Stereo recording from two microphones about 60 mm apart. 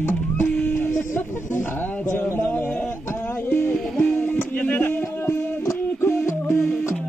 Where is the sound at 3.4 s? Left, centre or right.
Left.